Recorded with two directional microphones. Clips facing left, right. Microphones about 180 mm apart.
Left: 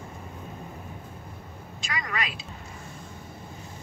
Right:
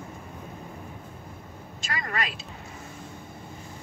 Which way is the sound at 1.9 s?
45° right (ahead or behind).